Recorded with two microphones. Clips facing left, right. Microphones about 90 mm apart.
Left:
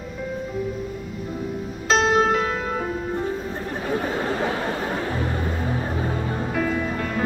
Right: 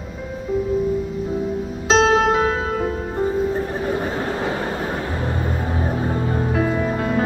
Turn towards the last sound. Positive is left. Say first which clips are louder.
# right 4 dB
turn(degrees=-25)  # may be behind; listen again after turning